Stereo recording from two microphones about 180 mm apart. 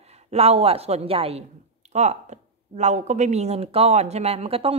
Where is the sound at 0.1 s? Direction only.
35° right (ahead or behind).